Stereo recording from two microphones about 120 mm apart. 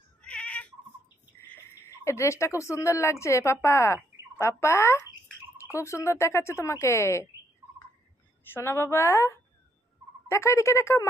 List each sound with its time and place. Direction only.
0.2 s a sound: 10° left (ahead or behind)
2.0 s speech: 25° left (ahead or behind)
8.5 s speech: 20° left (ahead or behind)